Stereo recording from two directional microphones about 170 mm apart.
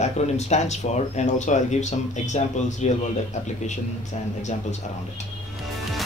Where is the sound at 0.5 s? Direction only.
45° left (ahead or behind).